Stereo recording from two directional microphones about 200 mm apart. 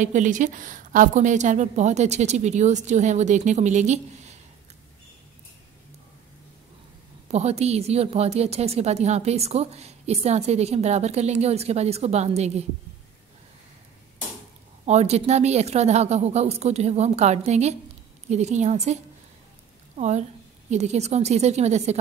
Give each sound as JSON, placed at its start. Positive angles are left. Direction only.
{"t": 0.0, "sound": "a woman's voice", "side_deg": -40}
{"t": 7.2, "sound": "a woman's voice", "side_deg": -30}
{"t": 14.9, "sound": "a woman's voice", "side_deg": -35}
{"t": 20.0, "sound": "a woman's voice", "side_deg": -35}